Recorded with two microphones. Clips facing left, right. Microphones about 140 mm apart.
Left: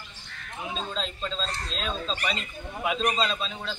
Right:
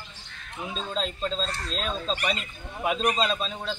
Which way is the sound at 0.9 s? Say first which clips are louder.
Right 3 dB; 40° right (ahead or behind).